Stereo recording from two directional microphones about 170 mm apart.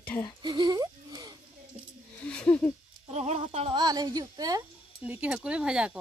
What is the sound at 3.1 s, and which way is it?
Speech, 40° right (ahead or behind).